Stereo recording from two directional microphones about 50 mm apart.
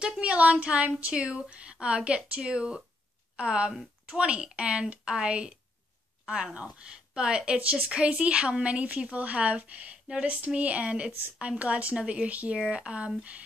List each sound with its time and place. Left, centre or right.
0.0 s a woman's voice: right